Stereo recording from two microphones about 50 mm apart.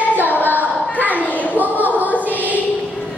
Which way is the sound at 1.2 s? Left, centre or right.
Left.